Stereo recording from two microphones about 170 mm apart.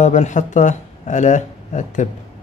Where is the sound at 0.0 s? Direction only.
45° left (ahead or behind).